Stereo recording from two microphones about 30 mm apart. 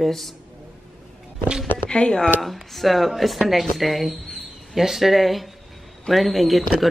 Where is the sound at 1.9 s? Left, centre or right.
Left.